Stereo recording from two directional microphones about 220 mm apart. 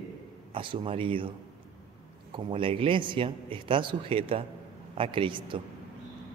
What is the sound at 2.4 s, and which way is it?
Speech, 25° right (ahead or behind).